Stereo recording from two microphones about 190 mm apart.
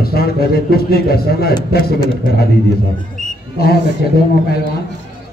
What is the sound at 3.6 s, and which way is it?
Speech, 55° left (ahead or behind).